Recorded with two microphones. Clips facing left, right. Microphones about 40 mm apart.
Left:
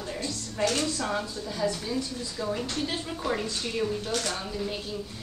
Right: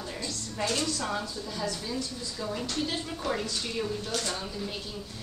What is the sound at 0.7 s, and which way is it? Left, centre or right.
Speech, left.